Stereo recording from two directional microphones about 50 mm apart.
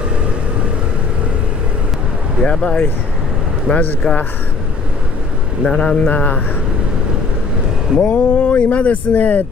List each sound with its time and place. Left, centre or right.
2.4 s speech: left
5.7 s speech: left
8.0 s speech: left